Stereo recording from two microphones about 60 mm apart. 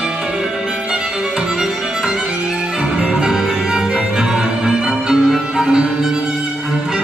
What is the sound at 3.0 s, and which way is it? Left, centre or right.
Music, centre.